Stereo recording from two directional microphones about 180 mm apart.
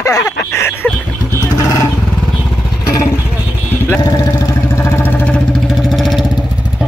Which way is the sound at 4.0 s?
20° left (ahead or behind).